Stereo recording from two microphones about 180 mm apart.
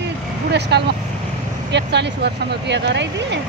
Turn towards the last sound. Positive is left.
turn(degrees=-75)  # may be behind; listen again after turning